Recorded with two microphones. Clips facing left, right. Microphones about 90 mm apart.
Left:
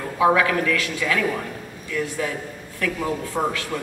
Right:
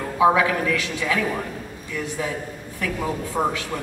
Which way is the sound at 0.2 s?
20° right (ahead or behind).